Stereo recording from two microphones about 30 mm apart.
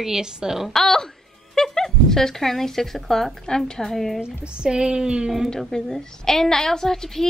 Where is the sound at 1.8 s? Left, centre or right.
Centre.